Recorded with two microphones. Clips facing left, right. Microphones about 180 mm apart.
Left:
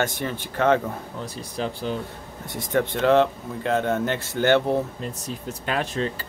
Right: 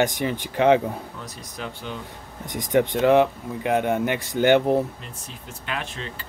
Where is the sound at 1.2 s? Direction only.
30° left (ahead or behind).